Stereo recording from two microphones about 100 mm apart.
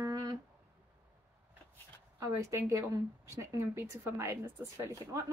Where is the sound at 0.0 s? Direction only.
40° right (ahead or behind).